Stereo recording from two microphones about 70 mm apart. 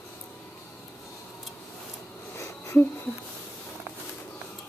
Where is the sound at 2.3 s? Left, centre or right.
Left.